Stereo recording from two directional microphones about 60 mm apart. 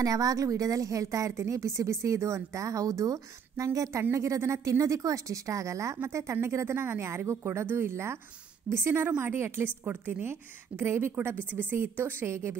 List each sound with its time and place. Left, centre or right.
0.0 s a woman's voice: right
4.1 s a woman's voice: right
10.9 s a woman's voice: right